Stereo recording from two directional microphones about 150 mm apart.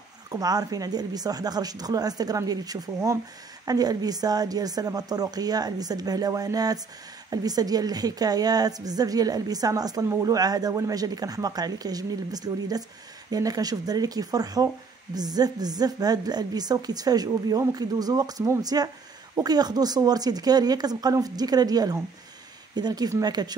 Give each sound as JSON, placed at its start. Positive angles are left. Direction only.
{"t": 0.3, "sound": "a woman's voice", "side_deg": -25}